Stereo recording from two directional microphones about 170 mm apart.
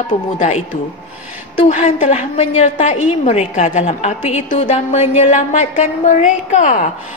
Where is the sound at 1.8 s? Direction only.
40° left (ahead or behind).